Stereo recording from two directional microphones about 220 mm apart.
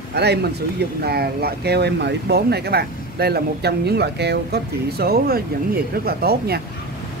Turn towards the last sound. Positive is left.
turn(degrees=-45)  # may be behind; listen again after turning